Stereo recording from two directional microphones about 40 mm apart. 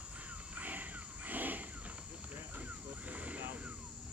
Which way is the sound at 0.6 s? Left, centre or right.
Right.